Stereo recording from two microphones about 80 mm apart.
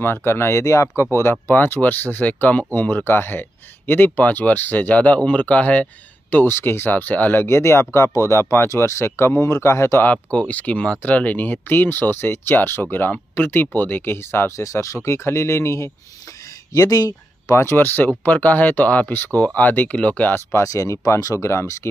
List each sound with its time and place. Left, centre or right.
0.0 s speech: left
1.3 s speech: left
6.3 s speech: left
7.4 s speech: left
10.0 s speech: centre; by 15.9 s left
16.7 s speech: left
17.6 s speech: left
20.5 s speech: left